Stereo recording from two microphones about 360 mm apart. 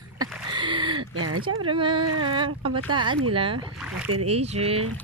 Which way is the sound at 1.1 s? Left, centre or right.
Right.